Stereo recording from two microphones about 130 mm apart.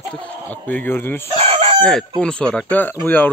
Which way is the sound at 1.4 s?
50° right (ahead or behind).